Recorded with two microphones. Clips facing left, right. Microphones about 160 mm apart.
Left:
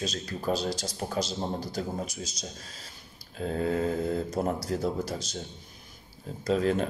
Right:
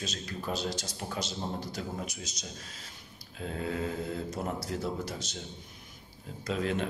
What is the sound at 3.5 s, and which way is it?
A man's voice, 40° left (ahead or behind).